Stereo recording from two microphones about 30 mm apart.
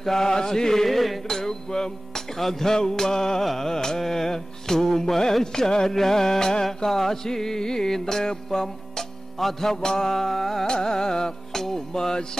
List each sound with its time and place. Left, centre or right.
0.0 s music: centre
0.8 s music: centre
1.2 s music: centre
6.9 s music: centre
10.7 s music: left